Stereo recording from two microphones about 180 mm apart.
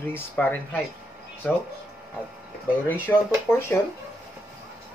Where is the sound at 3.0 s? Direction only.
5° left (ahead or behind).